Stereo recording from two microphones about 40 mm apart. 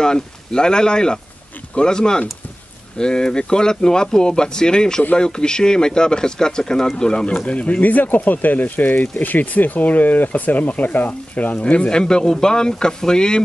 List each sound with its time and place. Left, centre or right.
0.0 s speech: centre
7.8 s speech: left
11.9 s speech: centre